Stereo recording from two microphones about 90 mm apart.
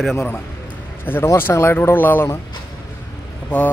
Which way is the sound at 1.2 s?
30° left (ahead or behind).